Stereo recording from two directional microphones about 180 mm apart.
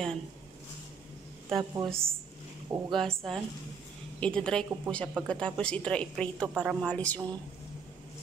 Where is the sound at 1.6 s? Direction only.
25° right (ahead or behind).